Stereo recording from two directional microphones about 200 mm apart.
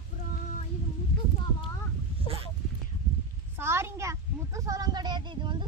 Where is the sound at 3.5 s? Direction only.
10° right (ahead or behind).